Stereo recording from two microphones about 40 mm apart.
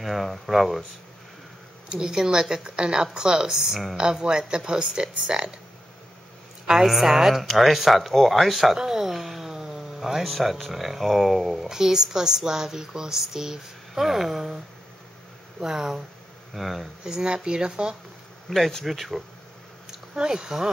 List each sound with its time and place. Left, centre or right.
0.0 s speech: centre
1.9 s speech: right
6.7 s a woman's voice: centre
8.7 s a woman's voice: centre
11.7 s a woman's voice: centre
15.6 s a woman's voice: centre
16.5 s speech: centre
17.0 s speech: centre
18.5 s speech: centre
18.9 s speech: centre
19.9 s speech: centre